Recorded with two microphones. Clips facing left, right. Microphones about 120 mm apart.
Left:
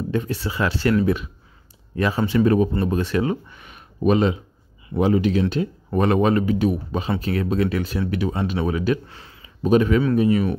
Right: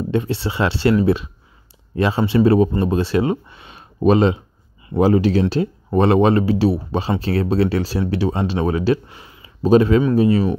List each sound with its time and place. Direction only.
0.1 s speech: 25° right (ahead or behind)
9.0 s speech: 15° right (ahead or behind)
9.6 s speech: 30° right (ahead or behind)